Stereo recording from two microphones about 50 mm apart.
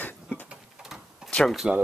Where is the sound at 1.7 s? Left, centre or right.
Centre.